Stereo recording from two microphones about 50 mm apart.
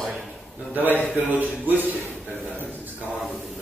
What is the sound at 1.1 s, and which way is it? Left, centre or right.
Speech, right.